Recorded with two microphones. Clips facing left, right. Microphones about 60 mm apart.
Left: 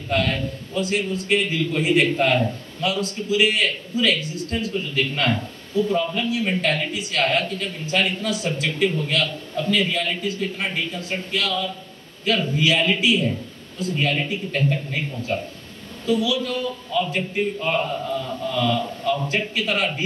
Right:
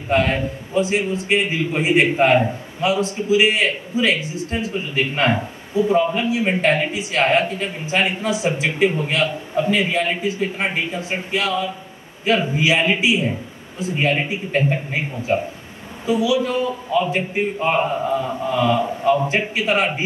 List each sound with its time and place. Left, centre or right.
0.1 s a man's voice: right
6.9 s a man's voice: centre